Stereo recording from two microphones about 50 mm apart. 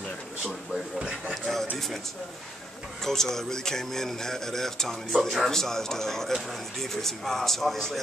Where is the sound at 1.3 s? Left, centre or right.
Centre.